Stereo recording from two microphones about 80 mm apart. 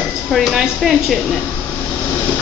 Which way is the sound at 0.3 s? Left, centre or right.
Centre.